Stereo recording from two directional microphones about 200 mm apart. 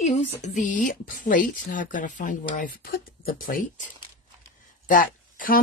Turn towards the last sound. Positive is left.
turn(degrees=45)  # may be behind; listen again after turning